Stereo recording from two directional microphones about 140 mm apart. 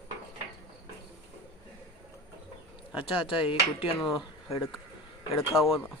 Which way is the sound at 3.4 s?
40° left (ahead or behind).